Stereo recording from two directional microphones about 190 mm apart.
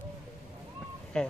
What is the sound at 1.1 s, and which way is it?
Speech, 5° left (ahead or behind).